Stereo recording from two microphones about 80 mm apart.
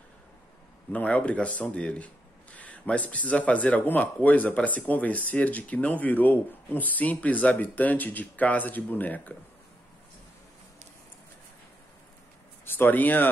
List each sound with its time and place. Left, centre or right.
0.9 s speech: centre
12.6 s speech: left